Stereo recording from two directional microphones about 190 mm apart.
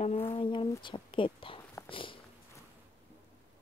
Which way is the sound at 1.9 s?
25° left (ahead or behind).